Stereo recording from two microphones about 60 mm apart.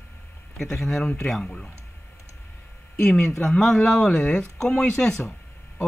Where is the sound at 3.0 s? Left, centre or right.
Centre.